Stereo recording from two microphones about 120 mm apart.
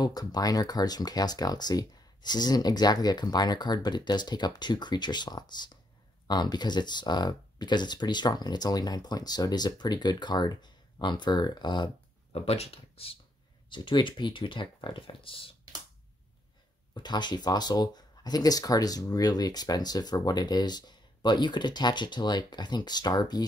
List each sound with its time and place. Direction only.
0.0 s speech: 35° left (ahead or behind)
12.3 s speech: 60° left (ahead or behind)
13.7 s speech: 40° left (ahead or behind)
16.9 s speech: 40° left (ahead or behind)